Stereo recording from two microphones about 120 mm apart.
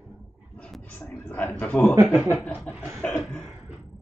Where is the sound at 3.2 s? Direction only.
5° left (ahead or behind).